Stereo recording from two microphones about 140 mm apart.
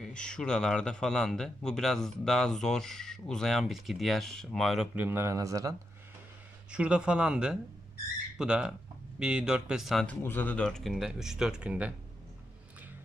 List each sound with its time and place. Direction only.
0.0 s a man's voice: 5° left (ahead or behind)
4.9 s speech: 15° right (ahead or behind)
6.7 s a man's voice: 5° right (ahead or behind)
10.0 s a man's voice: 15° left (ahead or behind); by 11.9 s 10° right (ahead or behind)